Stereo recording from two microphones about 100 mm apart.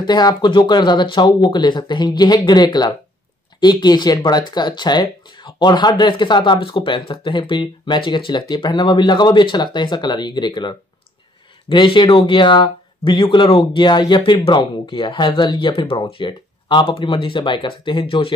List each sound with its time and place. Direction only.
0.0 s speech: 45° left (ahead or behind)
11.7 s speech: 55° left (ahead or behind)